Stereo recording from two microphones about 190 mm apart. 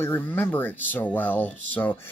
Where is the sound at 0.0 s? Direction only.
10° left (ahead or behind).